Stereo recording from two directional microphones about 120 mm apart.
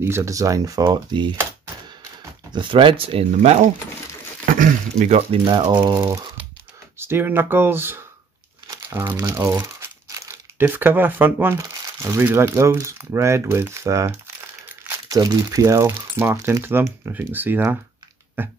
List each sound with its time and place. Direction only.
0.0 s speech: 25° right (ahead or behind); by 1.3 s 40° right (ahead or behind)
2.5 s speech: 45° right (ahead or behind)
4.5 s speech: 80° right
5.4 s speech: 35° right (ahead or behind)
5.9 s speech: 20° right (ahead or behind)